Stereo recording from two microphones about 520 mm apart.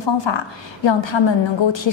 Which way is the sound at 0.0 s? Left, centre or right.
Left.